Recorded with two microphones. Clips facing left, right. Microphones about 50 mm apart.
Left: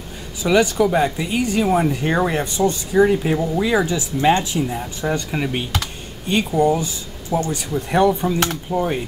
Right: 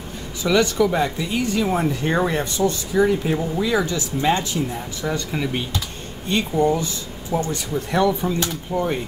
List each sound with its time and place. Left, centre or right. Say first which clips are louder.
0.4 s speech: left 2 dB; centre
2.5 s speech: left 3 dB; left
7.3 s speech: left 2 dB; centre
7.9 s speech: left 3 dB; left